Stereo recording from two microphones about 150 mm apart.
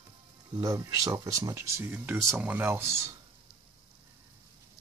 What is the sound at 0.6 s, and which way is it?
Speech, 25° right (ahead or behind).